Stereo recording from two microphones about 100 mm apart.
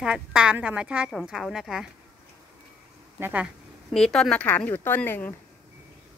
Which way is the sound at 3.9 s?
5° left (ahead or behind).